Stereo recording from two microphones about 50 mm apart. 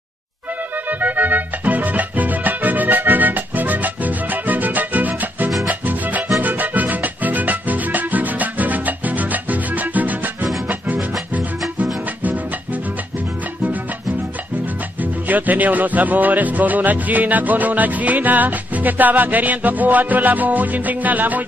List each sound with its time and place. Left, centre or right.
0.8 s music: right
15.0 s music: right